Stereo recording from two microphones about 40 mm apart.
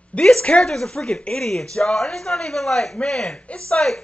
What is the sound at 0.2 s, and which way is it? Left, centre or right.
A man's voice, left.